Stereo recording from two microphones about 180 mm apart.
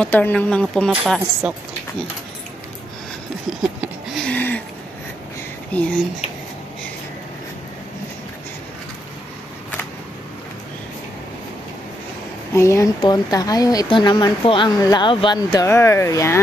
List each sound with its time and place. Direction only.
0.0 s speech: 10° left (ahead or behind)
3.8 s a sound: centre (ahead or behind)
5.7 s speech: 10° left (ahead or behind)
12.5 s speech: 15° left (ahead or behind)